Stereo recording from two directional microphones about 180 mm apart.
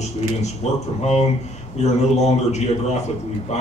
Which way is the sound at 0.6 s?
35° left (ahead or behind).